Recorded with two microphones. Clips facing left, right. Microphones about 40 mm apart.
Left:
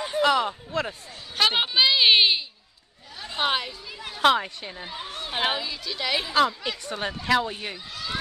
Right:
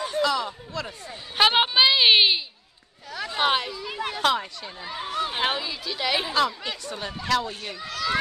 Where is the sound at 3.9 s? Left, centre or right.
Right.